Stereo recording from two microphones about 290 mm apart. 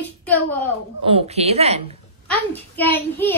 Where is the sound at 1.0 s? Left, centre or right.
Centre.